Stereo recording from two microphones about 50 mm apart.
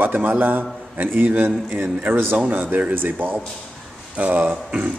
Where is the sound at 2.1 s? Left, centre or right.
Right.